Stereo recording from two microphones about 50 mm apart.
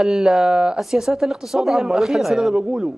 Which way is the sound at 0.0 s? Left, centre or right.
Centre.